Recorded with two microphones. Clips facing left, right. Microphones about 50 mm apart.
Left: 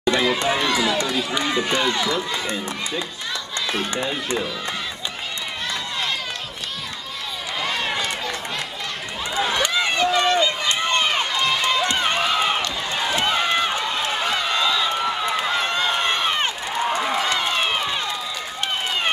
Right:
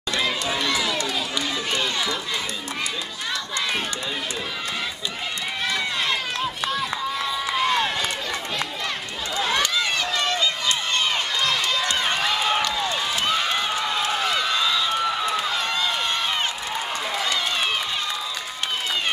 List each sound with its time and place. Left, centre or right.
0.4 s run: left
9.6 s run: left
16.9 s a sound: left